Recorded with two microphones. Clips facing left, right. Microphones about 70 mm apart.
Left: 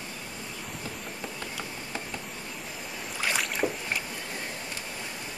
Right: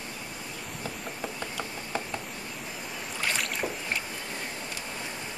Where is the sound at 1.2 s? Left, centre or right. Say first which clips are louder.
Right 3 dB; centre.